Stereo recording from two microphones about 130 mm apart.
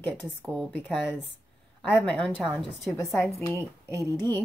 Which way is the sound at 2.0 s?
10° left (ahead or behind).